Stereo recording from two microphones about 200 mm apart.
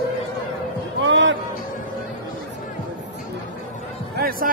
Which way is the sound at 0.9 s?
70° right (ahead or behind).